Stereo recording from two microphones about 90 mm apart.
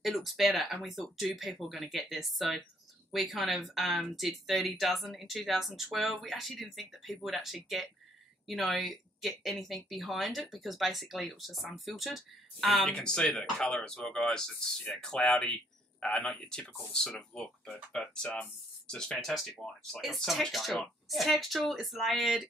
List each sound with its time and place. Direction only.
0.0 s speech: centre (ahead or behind)